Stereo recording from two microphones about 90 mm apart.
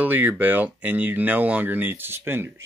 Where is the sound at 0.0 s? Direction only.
20° right (ahead or behind).